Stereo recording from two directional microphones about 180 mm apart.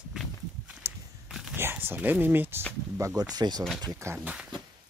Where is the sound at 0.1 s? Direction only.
5° right (ahead or behind).